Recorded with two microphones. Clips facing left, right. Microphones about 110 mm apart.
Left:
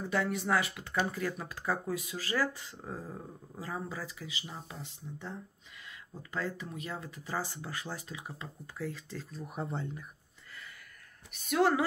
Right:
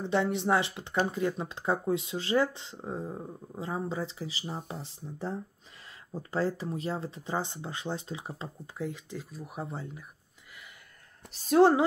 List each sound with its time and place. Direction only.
0.0 s speech: 25° right (ahead or behind); by 10.0 s 5° right (ahead or behind)
11.2 s a woman's voice: 30° right (ahead or behind)